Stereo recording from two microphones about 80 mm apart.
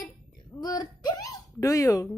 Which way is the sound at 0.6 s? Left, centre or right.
Left.